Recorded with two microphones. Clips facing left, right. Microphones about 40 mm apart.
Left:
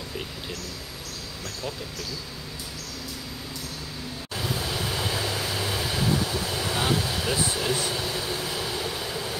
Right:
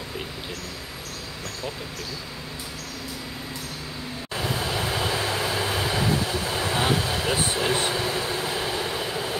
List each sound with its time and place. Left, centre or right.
4.3 s vehicle: right